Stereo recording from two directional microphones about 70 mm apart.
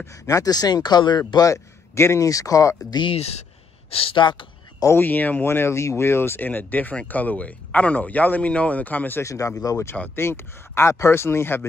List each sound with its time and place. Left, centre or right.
0.0 s speech: left
1.5 s speech: left
4.2 s a sound: left
5.0 s speech: left
9.2 s speech: left
10.1 s speech: left